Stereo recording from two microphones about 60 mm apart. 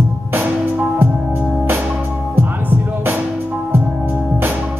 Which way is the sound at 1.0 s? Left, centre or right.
Right.